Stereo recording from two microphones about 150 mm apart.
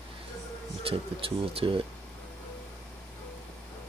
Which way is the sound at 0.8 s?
40° right (ahead or behind).